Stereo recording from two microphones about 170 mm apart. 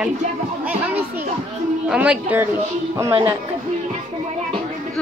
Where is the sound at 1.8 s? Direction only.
5° right (ahead or behind).